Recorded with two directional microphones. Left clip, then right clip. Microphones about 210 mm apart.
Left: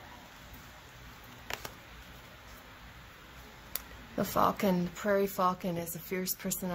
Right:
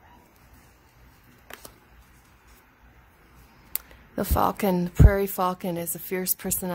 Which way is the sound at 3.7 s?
45° right (ahead or behind).